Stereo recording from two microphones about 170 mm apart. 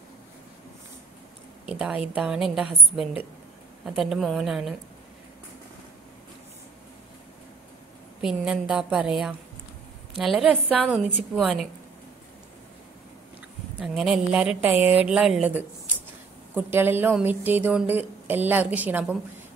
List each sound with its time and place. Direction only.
1.7 s a woman's voice: 5° right (ahead or behind)
8.2 s a woman's voice: 5° right (ahead or behind)
13.7 s a woman's voice: centre (ahead or behind)